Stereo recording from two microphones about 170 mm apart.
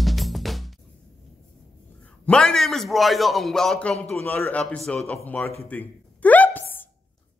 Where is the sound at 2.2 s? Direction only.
5° left (ahead or behind).